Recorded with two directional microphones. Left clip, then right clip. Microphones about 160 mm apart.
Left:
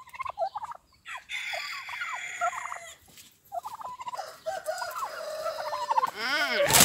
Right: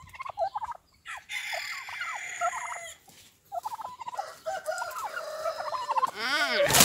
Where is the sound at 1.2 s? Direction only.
65° right (ahead or behind).